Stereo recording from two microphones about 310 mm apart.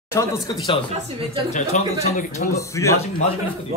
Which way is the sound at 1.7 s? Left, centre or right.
Left.